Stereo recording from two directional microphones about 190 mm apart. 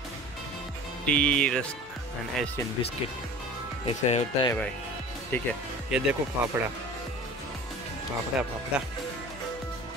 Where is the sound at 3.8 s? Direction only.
30° left (ahead or behind).